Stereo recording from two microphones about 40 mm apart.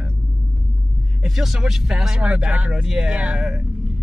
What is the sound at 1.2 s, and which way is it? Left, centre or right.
Speech, centre.